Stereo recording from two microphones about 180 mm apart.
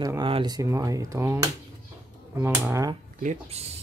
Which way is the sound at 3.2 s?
40° right (ahead or behind).